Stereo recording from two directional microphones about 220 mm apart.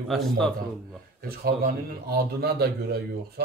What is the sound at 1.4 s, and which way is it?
A man's voice, 45° right (ahead or behind).